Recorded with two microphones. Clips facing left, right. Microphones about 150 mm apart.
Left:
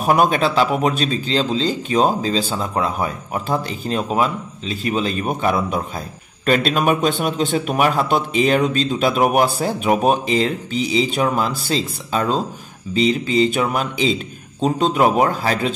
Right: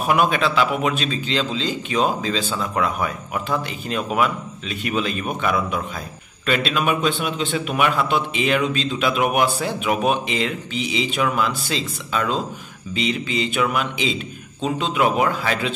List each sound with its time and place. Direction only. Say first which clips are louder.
0.0 s a man's voice: left 3 dB; 40° left (ahead or behind)